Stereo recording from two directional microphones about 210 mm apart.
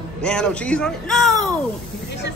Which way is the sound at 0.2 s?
5° left (ahead or behind).